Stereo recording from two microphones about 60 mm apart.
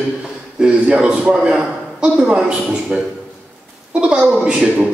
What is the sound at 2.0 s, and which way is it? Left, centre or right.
A man's voice, right.